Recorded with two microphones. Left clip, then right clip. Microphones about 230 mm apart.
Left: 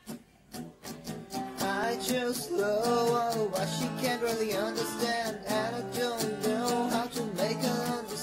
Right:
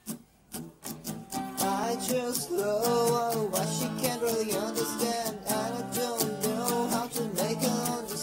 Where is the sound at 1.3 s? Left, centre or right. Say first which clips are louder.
Right 2 dB; right.